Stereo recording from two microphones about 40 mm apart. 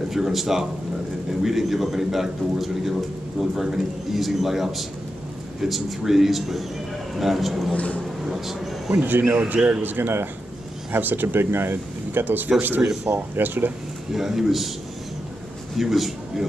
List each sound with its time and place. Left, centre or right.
0.1 s a man's voice: centre
7.7 s vehicle: left
8.3 s speech: centre
9.0 s speech: right
14.1 s a man's voice: centre
15.7 s a man's voice: centre